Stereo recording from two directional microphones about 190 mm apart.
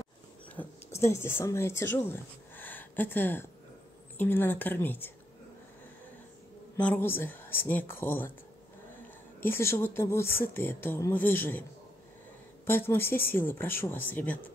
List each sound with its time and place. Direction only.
0.6 s speech: 15° left (ahead or behind)
6.8 s speech: 10° left (ahead or behind)
9.4 s speech: 10° left (ahead or behind)
12.6 s speech: 10° left (ahead or behind)